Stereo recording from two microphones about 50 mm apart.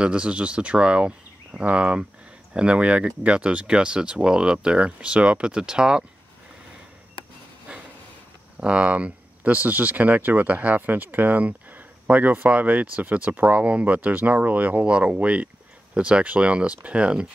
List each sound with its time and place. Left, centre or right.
0.0 s speech: right
8.5 s speech: right